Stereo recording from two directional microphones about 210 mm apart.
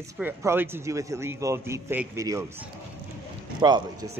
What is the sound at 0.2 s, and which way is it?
A man's voice, 10° right (ahead or behind).